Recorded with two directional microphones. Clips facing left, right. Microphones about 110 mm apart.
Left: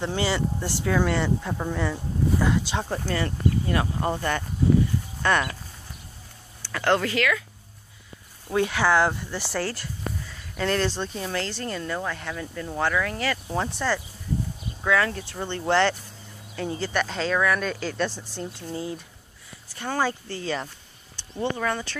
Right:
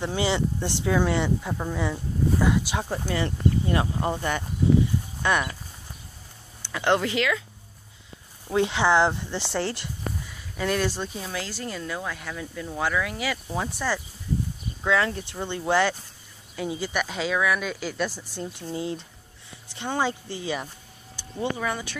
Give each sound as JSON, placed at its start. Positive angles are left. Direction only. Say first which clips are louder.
{"t": 0.0, "sound": "speech", "louder": "even", "side_deg": -15}
{"t": 1.5, "sound": "speech", "louder": "left 1 dB", "side_deg": 0}
{"t": 2.3, "sound": "a sound", "louder": "right 1 dB", "side_deg": -10}
{"t": 3.1, "sound": "speech", "louder": "right 1 dB", "side_deg": -20}
{"t": 6.6, "sound": "speech", "louder": "even", "side_deg": -20}
{"t": 8.5, "sound": "speech", "louder": "right 1 dB", "side_deg": -20}
{"t": 10.6, "sound": "speech", "louder": "left 1 dB", "side_deg": -10}
{"t": 14.9, "sound": "speech", "louder": "even", "side_deg": -20}
{"t": 18.4, "sound": "speech", "louder": "right 1 dB", "side_deg": -20}